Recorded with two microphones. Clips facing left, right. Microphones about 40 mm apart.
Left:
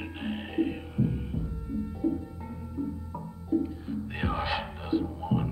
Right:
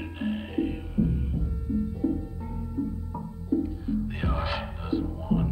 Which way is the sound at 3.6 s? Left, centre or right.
Centre.